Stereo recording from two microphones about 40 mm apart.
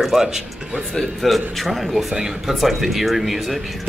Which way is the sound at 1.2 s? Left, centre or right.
Centre.